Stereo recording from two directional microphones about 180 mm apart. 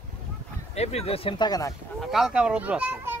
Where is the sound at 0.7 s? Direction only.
35° left (ahead or behind); by 1.7 s 20° left (ahead or behind).